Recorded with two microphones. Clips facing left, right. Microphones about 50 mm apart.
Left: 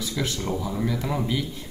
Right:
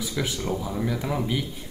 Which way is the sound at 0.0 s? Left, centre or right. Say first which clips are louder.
Even; centre.